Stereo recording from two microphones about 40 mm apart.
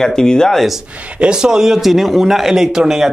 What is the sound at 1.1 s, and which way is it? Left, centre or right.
Speech, right.